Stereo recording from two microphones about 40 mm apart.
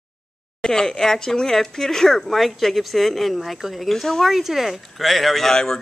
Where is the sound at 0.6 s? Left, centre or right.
Centre.